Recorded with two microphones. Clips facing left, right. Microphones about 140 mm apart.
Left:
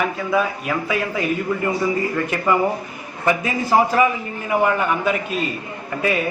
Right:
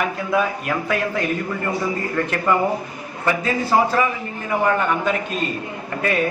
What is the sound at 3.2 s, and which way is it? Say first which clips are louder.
A man's voice: left 1 dB; 15° left (ahead or behind).